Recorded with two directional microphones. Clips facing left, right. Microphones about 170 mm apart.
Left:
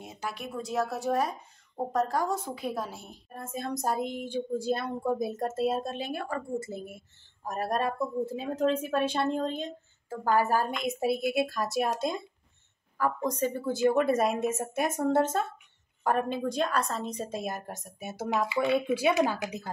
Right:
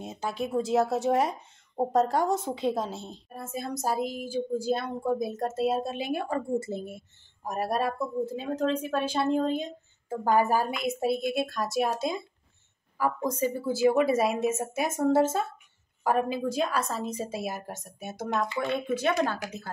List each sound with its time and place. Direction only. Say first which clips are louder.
0.0 s a woman's voice: right 5 dB; 25° right (ahead or behind)
3.3 s a woman's voice: even; 5° right (ahead or behind); by 7.1 s 25° right (ahead or behind)
7.4 s speech: right 1 dB; 10° right (ahead or behind)
8.3 s a woman's voice: left 2 dB; 5° left (ahead or behind)